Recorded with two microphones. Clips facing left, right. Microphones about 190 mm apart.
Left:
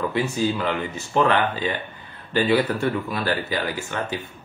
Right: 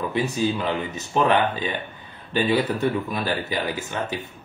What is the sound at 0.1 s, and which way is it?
A man's voice, 15° right (ahead or behind).